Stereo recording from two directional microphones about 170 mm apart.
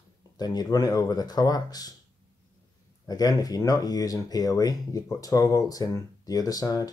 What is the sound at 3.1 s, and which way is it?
Speech, 20° left (ahead or behind).